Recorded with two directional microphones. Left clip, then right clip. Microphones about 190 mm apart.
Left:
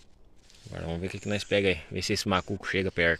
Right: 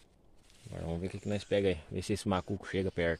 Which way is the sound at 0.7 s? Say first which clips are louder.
Left 4 dB; centre (ahead or behind).